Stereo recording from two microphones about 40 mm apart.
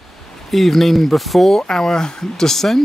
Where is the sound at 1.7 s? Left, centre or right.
Centre.